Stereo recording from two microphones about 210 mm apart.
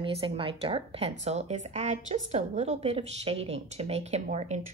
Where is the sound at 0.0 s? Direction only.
25° right (ahead or behind).